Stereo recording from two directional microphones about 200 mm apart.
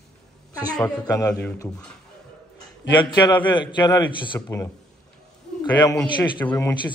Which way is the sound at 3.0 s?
20° left (ahead or behind).